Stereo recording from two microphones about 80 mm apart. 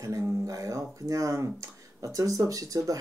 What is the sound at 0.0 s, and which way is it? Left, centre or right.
Speech, right.